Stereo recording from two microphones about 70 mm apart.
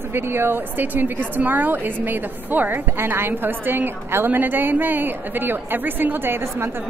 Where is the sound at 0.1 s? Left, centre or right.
Right.